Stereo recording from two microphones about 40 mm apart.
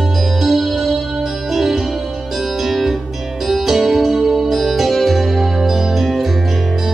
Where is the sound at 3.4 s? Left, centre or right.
Centre.